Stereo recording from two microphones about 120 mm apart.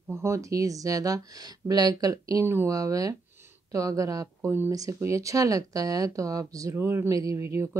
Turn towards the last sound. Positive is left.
turn(degrees=-25)  # may be behind; listen again after turning